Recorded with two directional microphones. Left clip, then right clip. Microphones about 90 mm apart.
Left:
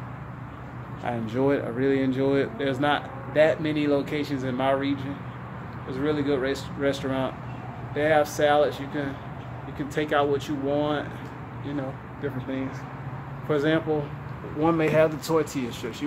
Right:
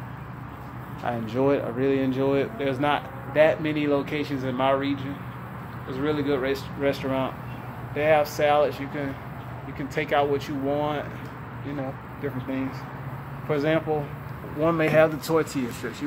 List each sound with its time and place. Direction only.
1.0 s speech: 20° left (ahead or behind)
2.6 s speech: 20° left (ahead or behind)
12.2 s speech: 15° left (ahead or behind)
14.8 s speech: 5° right (ahead or behind)